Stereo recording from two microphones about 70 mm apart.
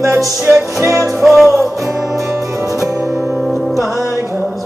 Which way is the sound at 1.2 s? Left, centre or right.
Centre.